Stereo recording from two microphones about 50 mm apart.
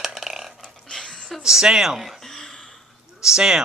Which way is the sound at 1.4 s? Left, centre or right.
Centre.